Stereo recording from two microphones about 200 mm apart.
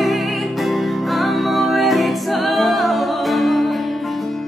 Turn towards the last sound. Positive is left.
turn(degrees=0)  # may be behind; listen again after turning